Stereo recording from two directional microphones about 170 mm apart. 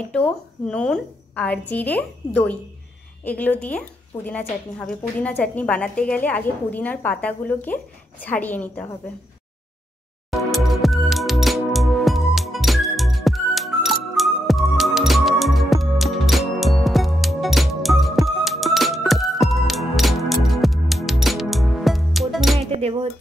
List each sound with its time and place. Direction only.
0.1 s a woman's voice: 5° left (ahead or behind)
10.3 s music: centre (ahead or behind)
22.6 s music: 35° right (ahead or behind)